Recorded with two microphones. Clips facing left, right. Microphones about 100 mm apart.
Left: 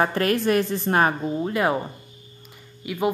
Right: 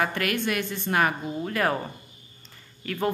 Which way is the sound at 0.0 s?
35° left (ahead or behind).